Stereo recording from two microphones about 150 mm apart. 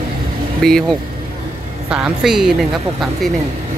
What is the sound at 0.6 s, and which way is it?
Speech, 5° left (ahead or behind).